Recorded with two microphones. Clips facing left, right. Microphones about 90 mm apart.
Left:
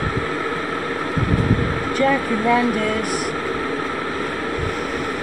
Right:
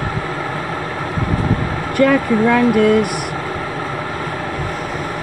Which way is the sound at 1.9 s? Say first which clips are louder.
Right 6 dB; 60° right (ahead or behind).